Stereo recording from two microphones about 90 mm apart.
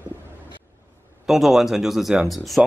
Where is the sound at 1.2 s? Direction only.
5° right (ahead or behind).